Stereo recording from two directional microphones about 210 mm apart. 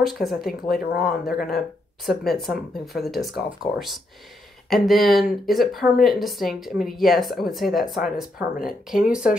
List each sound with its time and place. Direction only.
0.0 s speech: centre (ahead or behind)
0.7 s speech: 45° left (ahead or behind)
1.0 s speech: centre (ahead or behind)
4.6 s speech: centre (ahead or behind)